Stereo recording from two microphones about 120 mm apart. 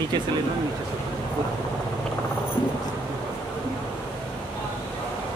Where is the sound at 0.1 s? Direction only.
40° right (ahead or behind).